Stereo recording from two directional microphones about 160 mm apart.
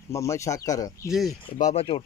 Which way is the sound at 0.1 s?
20° left (ahead or behind).